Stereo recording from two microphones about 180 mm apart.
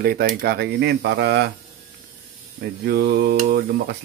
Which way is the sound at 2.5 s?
65° right (ahead or behind).